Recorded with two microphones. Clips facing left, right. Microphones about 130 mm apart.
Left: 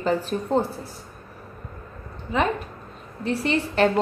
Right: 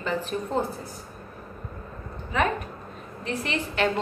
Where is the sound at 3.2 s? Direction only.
35° left (ahead or behind).